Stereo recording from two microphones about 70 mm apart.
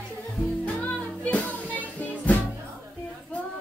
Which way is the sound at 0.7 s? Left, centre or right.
Left.